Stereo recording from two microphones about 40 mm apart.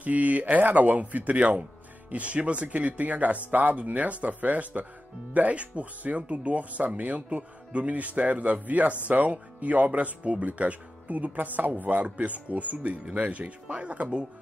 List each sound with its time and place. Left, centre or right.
0.0 s speech: right